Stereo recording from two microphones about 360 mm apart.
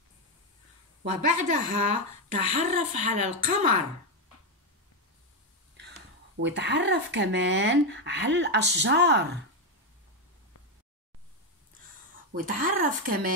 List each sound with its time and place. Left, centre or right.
1.0 s speech: right
5.8 s a sound: right
6.4 s speech: right
12.3 s speech: right